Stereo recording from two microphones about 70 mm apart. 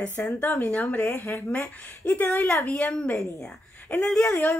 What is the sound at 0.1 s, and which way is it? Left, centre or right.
A woman's voice, left.